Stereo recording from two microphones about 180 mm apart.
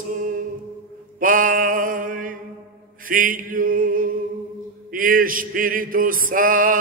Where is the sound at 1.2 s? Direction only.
50° right (ahead or behind).